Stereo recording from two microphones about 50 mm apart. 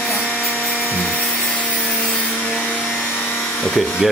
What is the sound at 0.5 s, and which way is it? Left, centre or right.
Rub, left.